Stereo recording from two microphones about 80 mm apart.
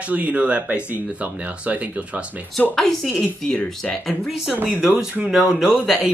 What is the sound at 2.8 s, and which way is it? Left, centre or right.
Speech, centre.